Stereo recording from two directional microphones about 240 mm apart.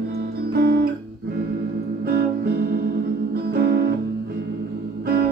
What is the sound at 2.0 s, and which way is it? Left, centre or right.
Music, right.